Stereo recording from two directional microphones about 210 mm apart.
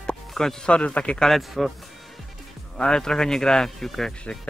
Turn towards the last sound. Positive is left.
turn(degrees=0)  # may be behind; listen again after turning